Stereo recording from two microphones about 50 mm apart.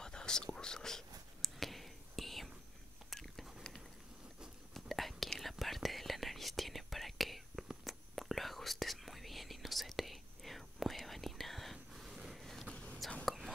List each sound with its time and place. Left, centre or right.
0.0 s whispering: centre
3.1 s biting: centre
4.7 s whispering: centre
12.7 s whispering: left
13.2 s whispering: centre